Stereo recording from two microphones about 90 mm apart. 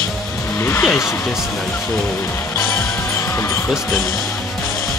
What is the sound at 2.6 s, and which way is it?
Music, 25° left (ahead or behind).